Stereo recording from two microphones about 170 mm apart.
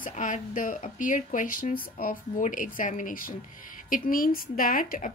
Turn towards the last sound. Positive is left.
turn(degrees=55)  # may be behind; listen again after turning